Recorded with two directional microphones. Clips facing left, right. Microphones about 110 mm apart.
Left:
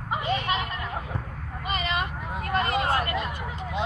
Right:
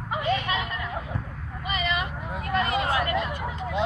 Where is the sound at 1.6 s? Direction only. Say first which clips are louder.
Even; 40° left (ahead or behind).